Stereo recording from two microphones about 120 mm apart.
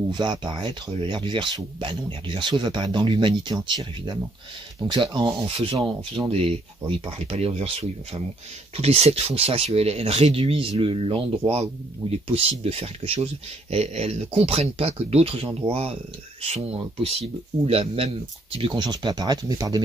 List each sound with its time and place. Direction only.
0.1 s speech: 40° right (ahead or behind)
6.3 s speech: 55° right (ahead or behind); by 19.8 s 35° right (ahead or behind)